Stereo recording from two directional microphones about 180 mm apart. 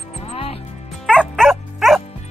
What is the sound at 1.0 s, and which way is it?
Music, 5° left (ahead or behind).